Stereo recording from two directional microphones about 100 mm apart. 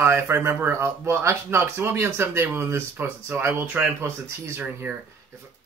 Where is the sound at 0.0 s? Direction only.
25° right (ahead or behind).